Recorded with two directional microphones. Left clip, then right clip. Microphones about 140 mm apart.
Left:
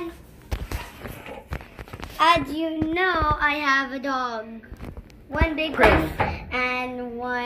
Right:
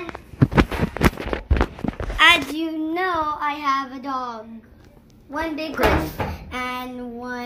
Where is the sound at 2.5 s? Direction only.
60° right (ahead or behind).